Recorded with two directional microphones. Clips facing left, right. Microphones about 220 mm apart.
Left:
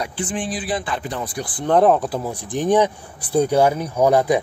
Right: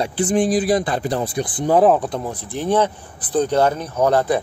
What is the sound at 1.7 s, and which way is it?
Speech, centre (ahead or behind).